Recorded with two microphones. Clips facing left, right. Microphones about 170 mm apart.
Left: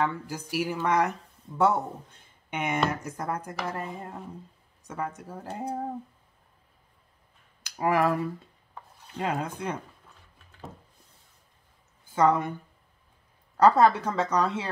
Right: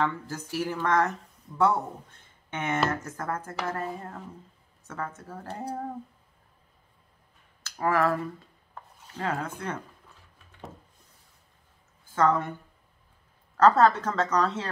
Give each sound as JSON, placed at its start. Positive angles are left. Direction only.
{"t": 0.0, "sound": "speech", "side_deg": 10}
{"t": 2.5, "sound": "speech", "side_deg": 15}
{"t": 7.6, "sound": "speech", "side_deg": 15}
{"t": 8.7, "sound": "rub", "side_deg": 15}
{"t": 12.1, "sound": "speech", "side_deg": 15}
{"t": 13.6, "sound": "speech", "side_deg": 10}